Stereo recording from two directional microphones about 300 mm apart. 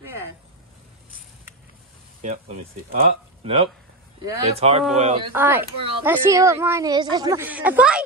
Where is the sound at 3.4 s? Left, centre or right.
Centre.